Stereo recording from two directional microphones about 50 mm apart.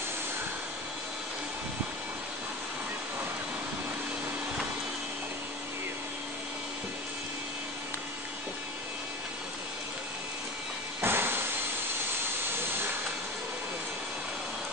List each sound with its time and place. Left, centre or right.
11.0 s vehicle: right